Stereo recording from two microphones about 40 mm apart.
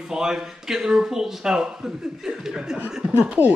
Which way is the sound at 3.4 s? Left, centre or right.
Right.